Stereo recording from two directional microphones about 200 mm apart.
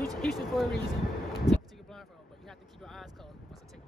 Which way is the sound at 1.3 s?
Centre (ahead or behind).